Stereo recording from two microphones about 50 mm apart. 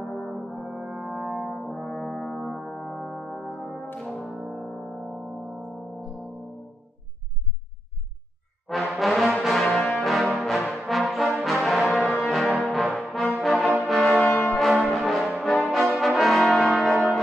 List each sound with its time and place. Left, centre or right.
0.2 s brass instrument: centre
2.4 s music: centre
8.6 s brass instrument: centre